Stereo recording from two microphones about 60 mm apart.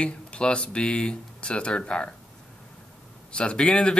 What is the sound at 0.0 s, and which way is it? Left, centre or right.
Speech, centre.